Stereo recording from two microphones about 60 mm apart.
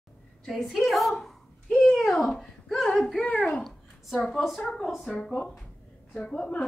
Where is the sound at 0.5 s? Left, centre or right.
Centre.